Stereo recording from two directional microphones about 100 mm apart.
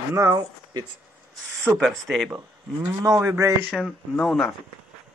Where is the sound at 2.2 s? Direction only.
20° right (ahead or behind).